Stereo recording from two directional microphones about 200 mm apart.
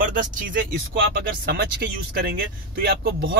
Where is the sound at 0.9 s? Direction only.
55° right (ahead or behind).